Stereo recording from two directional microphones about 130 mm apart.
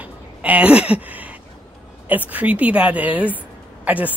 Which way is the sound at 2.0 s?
10° right (ahead or behind).